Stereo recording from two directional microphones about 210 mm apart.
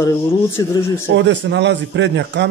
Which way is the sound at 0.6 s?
20° left (ahead or behind).